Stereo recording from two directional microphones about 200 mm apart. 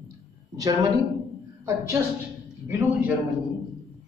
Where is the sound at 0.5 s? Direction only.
15° right (ahead or behind).